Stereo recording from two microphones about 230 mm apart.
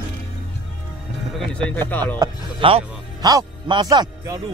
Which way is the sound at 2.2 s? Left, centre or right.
Right.